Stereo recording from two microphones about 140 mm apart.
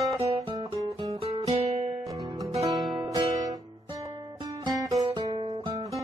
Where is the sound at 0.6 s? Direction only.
25° right (ahead or behind).